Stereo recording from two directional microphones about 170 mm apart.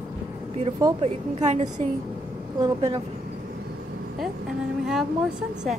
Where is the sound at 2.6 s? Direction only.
25° right (ahead or behind).